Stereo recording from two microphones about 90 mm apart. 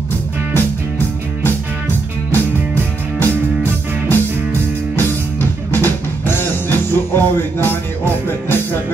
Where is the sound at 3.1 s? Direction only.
20° left (ahead or behind).